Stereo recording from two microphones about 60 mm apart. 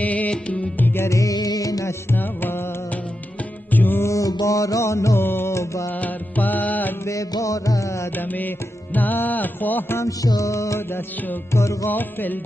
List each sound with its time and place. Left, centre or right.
0.0 s music: left
1.0 s music: left
2.0 s music: left
3.7 s music: left
4.0 s music: left
5.2 s music: left
5.5 s music: left
5.9 s music: left
7.1 s music: left
8.2 s music: left
9.9 s music: left
11.9 s music: left